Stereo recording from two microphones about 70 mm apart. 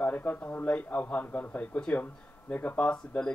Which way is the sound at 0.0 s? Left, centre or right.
Left.